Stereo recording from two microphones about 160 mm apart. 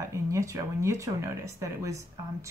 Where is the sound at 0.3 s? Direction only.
20° right (ahead or behind).